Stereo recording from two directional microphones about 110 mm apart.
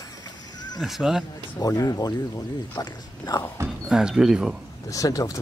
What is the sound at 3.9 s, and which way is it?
Speech, 5° right (ahead or behind).